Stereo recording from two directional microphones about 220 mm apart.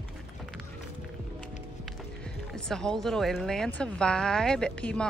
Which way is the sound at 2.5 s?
Centre (ahead or behind).